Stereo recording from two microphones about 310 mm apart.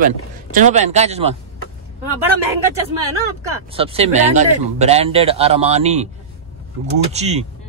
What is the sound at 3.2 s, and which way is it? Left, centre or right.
Speech, centre.